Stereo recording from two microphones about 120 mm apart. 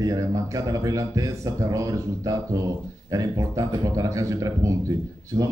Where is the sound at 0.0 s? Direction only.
30° right (ahead or behind).